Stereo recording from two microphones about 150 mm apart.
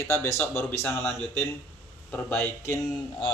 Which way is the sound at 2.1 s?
10° left (ahead or behind).